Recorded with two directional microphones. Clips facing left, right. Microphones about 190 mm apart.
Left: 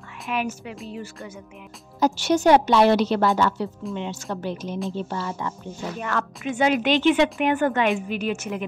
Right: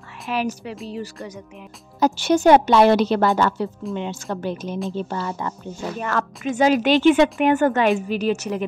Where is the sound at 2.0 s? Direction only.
55° right (ahead or behind).